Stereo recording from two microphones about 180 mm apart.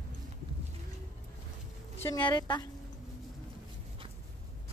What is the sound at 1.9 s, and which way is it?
Speech, 15° left (ahead or behind).